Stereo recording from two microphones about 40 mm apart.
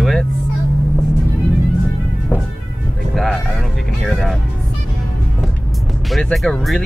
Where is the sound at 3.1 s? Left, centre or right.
Centre.